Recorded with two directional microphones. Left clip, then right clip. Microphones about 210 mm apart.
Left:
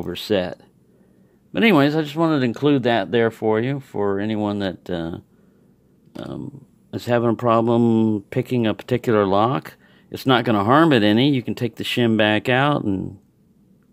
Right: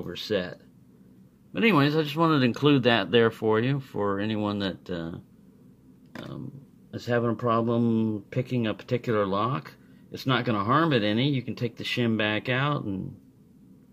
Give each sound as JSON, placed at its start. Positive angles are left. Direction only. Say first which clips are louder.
{"t": 0.0, "sound": "speech", "louder": "left 7 dB", "side_deg": 50}